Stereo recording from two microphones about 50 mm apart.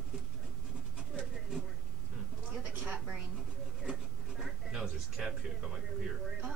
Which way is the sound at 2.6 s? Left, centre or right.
Right.